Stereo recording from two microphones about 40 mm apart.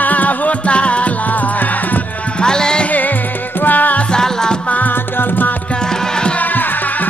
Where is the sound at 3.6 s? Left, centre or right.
Left.